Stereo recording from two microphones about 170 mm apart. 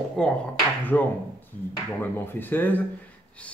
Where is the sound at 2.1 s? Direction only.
10° left (ahead or behind).